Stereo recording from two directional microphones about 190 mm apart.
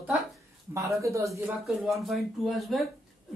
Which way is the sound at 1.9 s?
Centre (ahead or behind).